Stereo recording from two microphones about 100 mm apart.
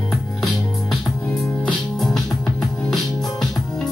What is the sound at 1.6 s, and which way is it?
Music, 5° left (ahead or behind).